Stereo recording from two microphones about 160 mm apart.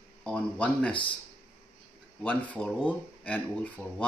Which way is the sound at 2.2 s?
5° left (ahead or behind).